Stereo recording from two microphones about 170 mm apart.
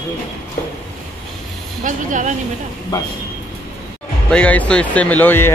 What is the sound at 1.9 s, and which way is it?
Speech, 50° right (ahead or behind).